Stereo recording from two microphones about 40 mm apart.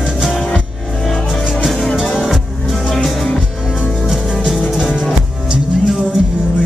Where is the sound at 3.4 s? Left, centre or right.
Centre.